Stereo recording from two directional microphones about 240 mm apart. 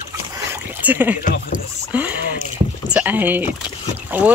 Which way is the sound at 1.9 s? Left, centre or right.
Centre.